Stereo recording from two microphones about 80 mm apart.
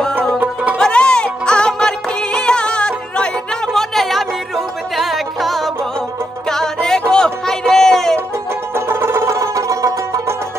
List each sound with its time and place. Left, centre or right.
0.7 s music: centre
8.7 s music: right